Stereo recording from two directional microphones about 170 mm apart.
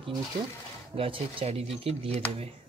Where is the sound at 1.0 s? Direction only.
30° right (ahead or behind).